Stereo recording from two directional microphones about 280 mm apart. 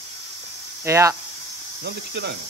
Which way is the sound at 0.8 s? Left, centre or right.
Centre.